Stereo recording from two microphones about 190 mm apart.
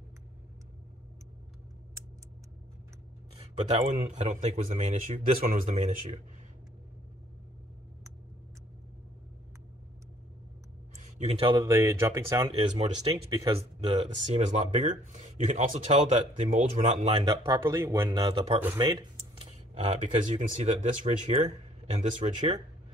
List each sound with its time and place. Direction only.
3.3 s speech: 35° right (ahead or behind)
11.0 s speech: 35° right (ahead or behind); by 12.4 s 15° right (ahead or behind)
12.4 s speech: 30° right (ahead or behind)
17.2 s speech: 20° right (ahead or behind)
18.2 s speech: 30° right (ahead or behind)
18.8 s a sound: 25° right (ahead or behind)
19.7 s speech: 40° right (ahead or behind)